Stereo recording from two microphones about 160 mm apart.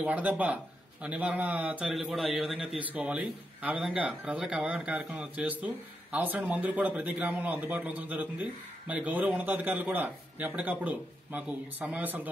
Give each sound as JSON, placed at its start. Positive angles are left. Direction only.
{"t": 0.0, "sound": "speech", "side_deg": -10}